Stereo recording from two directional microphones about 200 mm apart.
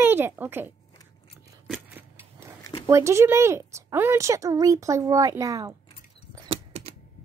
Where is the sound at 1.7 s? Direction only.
10° right (ahead or behind).